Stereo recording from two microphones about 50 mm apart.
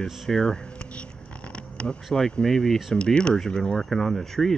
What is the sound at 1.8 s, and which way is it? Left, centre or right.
Speech, left.